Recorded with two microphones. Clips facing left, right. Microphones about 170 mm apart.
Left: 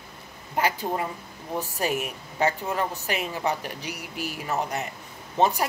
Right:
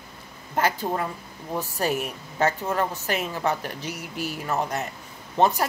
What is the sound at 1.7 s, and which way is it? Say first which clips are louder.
Speech: right 2 dB; 40° right (ahead or behind).